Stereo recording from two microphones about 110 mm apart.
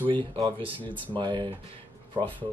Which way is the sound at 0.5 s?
50° right (ahead or behind).